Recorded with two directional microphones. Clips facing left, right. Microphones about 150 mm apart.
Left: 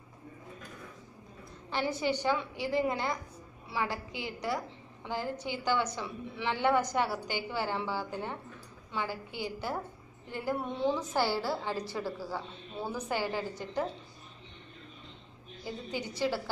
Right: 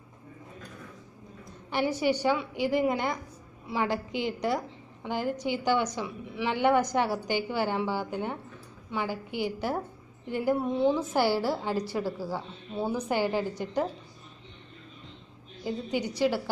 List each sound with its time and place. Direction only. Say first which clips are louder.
1.7 s a woman's voice: right 5 dB; 15° right (ahead or behind)
11.0 s a woman's voice: right 5 dB; 15° right (ahead or behind)
15.6 s a woman's voice: right 7 dB; 15° right (ahead or behind)